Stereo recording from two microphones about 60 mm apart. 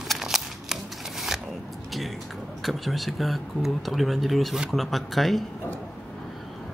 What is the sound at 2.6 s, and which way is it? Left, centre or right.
Speech, centre.